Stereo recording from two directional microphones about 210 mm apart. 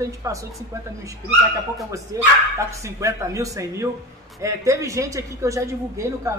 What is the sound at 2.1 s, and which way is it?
A woman's voice, 15° right (ahead or behind).